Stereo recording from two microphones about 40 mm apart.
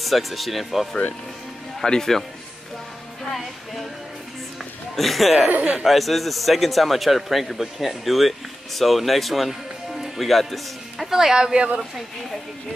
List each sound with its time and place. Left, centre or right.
0.0 s a man's voice: centre
1.8 s speech: centre
3.3 s music: centre
4.9 s a man's voice: centre
5.6 s speech: right
5.9 s a man's voice: centre
11.1 s speech: centre